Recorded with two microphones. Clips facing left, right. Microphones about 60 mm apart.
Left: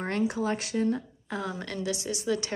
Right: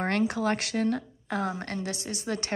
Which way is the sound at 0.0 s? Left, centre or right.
Right.